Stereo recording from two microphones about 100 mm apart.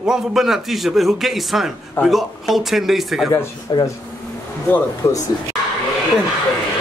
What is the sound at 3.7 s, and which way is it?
Speech, 45° left (ahead or behind).